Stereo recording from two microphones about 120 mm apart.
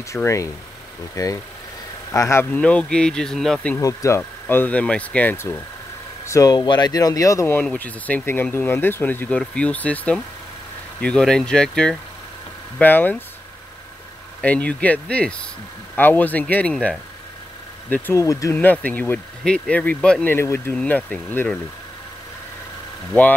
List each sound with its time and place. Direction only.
0.1 s speech: 25° left (ahead or behind)
2.6 s speech: 10° left (ahead or behind)
3.7 s speech: 25° left (ahead or behind)
14.4 s speech: 10° left (ahead or behind)
18.2 s speech: 25° left (ahead or behind)
18.6 s speech: 15° left (ahead or behind)
20.3 s speech: 20° left (ahead or behind)
20.7 s speech: 10° left (ahead or behind)